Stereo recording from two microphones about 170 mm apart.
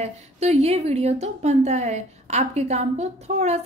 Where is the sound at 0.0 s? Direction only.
40° right (ahead or behind).